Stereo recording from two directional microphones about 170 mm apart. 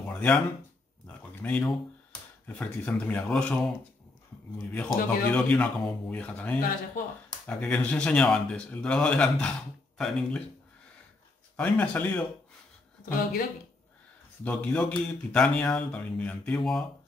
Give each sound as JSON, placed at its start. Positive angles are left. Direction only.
{"t": 0.0, "sound": "a sound", "side_deg": 10}
{"t": 2.4, "sound": "speech", "side_deg": 10}
{"t": 4.6, "sound": "speech", "side_deg": 10}
{"t": 7.0, "sound": "speech", "side_deg": 50}
{"t": 7.4, "sound": "speech", "side_deg": 5}
{"t": 11.5, "sound": "speech", "side_deg": 5}
{"t": 14.4, "sound": "speech", "side_deg": 10}